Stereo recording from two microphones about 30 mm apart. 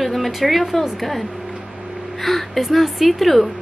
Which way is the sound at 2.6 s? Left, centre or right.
Centre.